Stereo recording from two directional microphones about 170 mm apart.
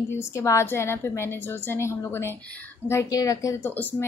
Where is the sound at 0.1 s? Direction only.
15° left (ahead or behind).